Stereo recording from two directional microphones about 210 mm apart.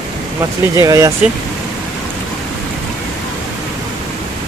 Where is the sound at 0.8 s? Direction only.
15° right (ahead or behind).